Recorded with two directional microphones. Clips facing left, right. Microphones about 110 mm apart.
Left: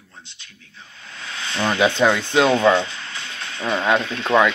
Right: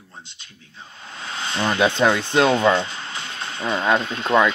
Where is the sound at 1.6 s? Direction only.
5° right (ahead or behind).